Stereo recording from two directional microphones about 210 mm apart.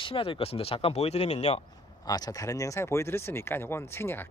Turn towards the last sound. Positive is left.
turn(degrees=10)  # may be behind; listen again after turning